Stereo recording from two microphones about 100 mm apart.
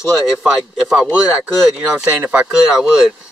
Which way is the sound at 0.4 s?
5° right (ahead or behind).